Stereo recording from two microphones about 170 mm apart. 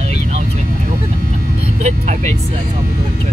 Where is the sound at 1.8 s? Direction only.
45° right (ahead or behind).